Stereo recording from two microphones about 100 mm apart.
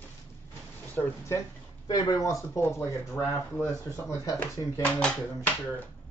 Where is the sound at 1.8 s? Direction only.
45° left (ahead or behind); by 3.7 s 20° left (ahead or behind).